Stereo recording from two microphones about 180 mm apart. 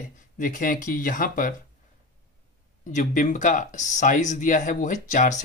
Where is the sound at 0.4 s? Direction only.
50° left (ahead or behind).